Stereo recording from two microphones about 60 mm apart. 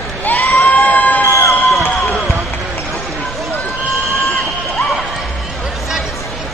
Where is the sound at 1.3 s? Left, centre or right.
Left.